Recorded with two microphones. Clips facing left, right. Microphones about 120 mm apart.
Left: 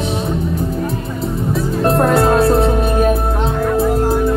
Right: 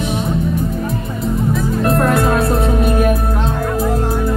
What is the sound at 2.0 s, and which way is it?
Music, 30° left (ahead or behind).